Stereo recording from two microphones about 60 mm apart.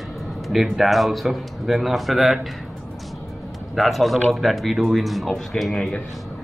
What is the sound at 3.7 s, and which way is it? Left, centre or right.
Speech, centre.